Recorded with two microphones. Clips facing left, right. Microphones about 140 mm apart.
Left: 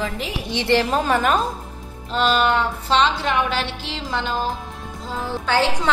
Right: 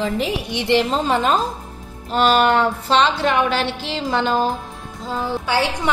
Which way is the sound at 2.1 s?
50° right (ahead or behind).